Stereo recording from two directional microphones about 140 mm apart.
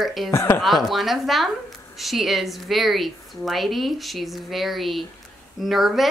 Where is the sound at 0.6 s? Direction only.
Centre (ahead or behind).